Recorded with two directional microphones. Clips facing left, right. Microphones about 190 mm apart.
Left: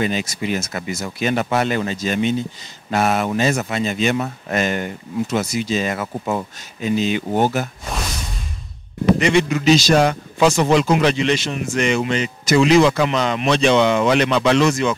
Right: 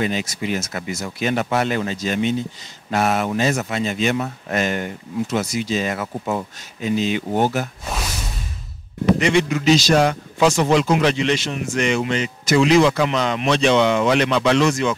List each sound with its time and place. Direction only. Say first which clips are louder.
0.0 s speech: left 1 dB; 10° left (ahead or behind)
7.9 s music: even; centre (ahead or behind)
9.0 s speech: left 1 dB; 10° left (ahead or behind)